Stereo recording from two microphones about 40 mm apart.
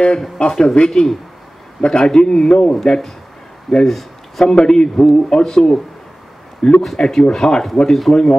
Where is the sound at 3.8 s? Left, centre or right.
Centre.